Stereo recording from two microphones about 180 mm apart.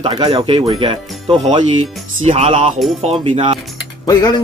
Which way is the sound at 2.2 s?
35° right (ahead or behind).